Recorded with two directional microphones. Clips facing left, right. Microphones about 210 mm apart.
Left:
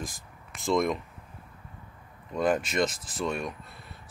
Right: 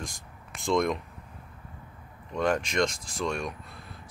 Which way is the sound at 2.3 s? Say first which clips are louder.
Even; 5° left (ahead or behind).